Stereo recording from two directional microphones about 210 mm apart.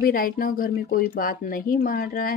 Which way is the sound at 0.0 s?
40° left (ahead or behind).